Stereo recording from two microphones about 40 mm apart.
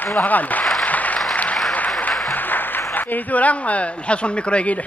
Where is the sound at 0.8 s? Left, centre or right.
Left.